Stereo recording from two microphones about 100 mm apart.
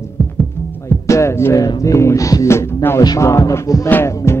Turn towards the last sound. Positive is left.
turn(degrees=25)  # may be behind; listen again after turning